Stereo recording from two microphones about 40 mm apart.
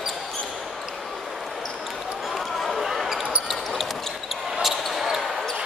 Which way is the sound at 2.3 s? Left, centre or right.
Centre.